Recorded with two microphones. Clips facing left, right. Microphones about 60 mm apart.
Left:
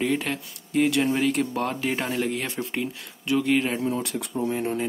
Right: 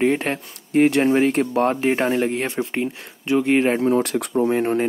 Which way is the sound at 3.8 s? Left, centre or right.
Right.